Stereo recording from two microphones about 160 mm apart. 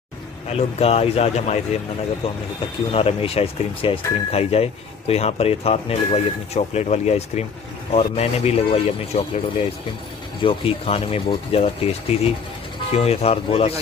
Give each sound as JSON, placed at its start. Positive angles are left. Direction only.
{"t": 0.6, "sound": "speech", "side_deg": 40}
{"t": 2.9, "sound": "speech", "side_deg": 35}
{"t": 10.4, "sound": "speech", "side_deg": 35}